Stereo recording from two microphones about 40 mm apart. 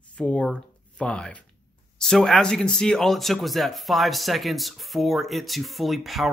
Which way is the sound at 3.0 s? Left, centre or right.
Centre.